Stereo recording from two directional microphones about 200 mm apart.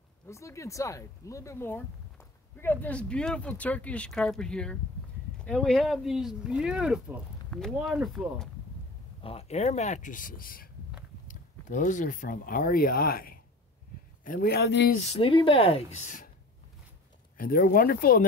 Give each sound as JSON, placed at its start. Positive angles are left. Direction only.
{"t": 0.3, "sound": "speech", "side_deg": 15}
{"t": 9.2, "sound": "speech", "side_deg": 30}
{"t": 15.0, "sound": "a woman's voice", "side_deg": 25}
{"t": 17.4, "sound": "speech", "side_deg": 45}